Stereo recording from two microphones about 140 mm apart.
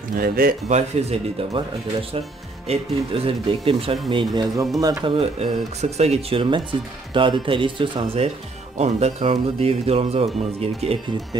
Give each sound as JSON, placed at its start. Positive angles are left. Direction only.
{"t": 0.1, "sound": "speech", "side_deg": -90}
{"t": 0.7, "sound": "speech", "side_deg": -50}
{"t": 2.7, "sound": "speech", "side_deg": -45}
{"t": 5.0, "sound": "speech", "side_deg": -45}
{"t": 6.4, "sound": "speech", "side_deg": -35}
{"t": 8.7, "sound": "speech", "side_deg": -50}